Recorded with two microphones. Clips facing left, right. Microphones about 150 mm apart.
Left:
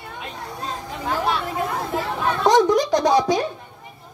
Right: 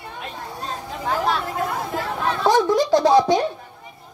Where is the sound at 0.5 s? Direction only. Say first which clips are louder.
Left 1 dB; centre (ahead or behind).